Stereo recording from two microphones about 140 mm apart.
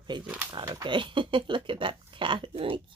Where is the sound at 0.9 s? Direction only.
35° right (ahead or behind).